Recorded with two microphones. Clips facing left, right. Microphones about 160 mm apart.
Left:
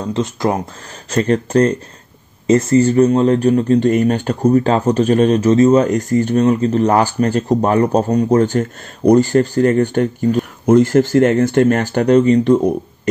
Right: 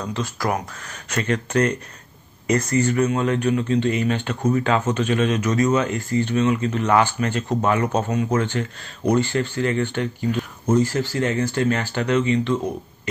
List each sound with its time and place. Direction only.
0.0 s speech: 25° left (ahead or behind); by 10.4 s 45° left (ahead or behind)
10.7 s speech: 55° left (ahead or behind)